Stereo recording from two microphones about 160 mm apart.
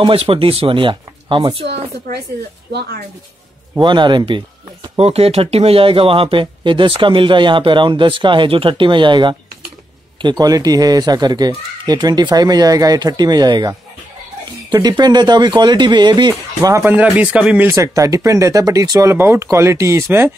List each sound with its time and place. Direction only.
0.0 s speech: 35° right (ahead or behind)
1.7 s speech: 90° right
3.7 s speech: 30° right (ahead or behind)
4.9 s speech: 40° right (ahead or behind); by 16.8 s 25° right (ahead or behind)
16.8 s speech: 10° right (ahead or behind)